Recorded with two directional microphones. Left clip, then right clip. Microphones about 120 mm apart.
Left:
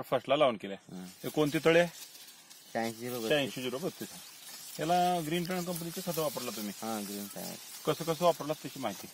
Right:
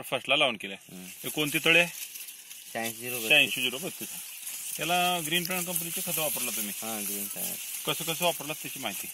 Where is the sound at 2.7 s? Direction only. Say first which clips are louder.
Right 1 dB; 35° right (ahead or behind).